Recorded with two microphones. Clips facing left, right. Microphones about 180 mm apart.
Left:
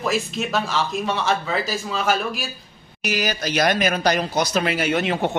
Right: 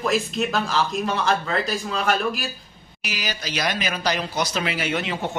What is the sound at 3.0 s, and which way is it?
Speech, 50° left (ahead or behind).